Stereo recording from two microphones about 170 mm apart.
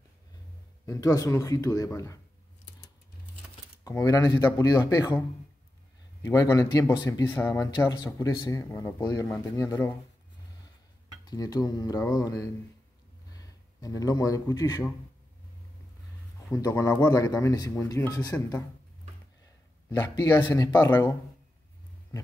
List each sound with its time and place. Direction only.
0.8 s speech: 20° left (ahead or behind)
4.0 s speech: 20° left (ahead or behind)
6.2 s speech: 20° left (ahead or behind)
11.2 s speech: 20° left (ahead or behind)
16.4 s speech: 15° left (ahead or behind)
20.4 s speech: 25° left (ahead or behind)